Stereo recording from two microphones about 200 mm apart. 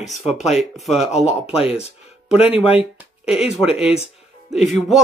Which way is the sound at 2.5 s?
30° left (ahead or behind).